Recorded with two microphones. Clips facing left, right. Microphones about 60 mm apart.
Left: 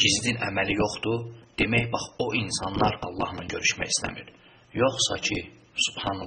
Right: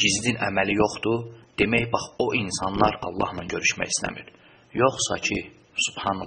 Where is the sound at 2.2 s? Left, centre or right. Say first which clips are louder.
Right 3 dB; right.